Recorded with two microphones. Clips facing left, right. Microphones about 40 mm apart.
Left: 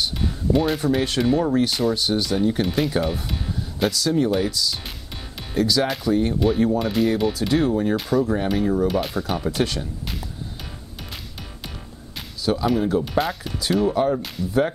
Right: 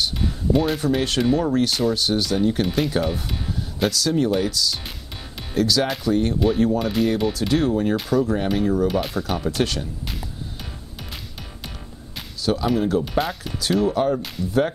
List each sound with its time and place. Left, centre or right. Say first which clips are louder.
0.2 s speech: even; centre
12.4 s speech: even; centre